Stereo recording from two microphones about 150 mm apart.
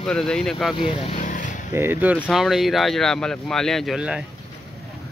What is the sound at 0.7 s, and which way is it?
Speech, 35° left (ahead or behind).